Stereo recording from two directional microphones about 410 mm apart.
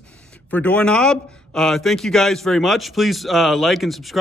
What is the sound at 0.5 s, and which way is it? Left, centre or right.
A man's voice, centre.